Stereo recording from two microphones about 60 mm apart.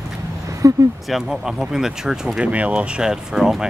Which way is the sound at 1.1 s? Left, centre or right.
Centre.